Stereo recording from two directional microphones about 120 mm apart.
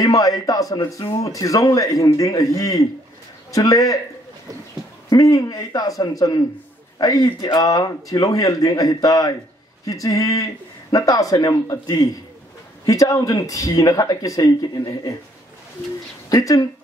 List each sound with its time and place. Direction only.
0.0 s speech: 30° left (ahead or behind)
5.1 s a man's voice: 25° left (ahead or behind)
16.3 s speech: 30° left (ahead or behind)